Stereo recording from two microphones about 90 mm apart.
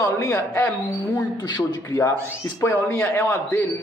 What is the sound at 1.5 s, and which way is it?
Speech, 55° left (ahead or behind).